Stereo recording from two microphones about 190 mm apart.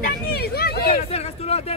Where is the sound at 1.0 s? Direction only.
30° left (ahead or behind).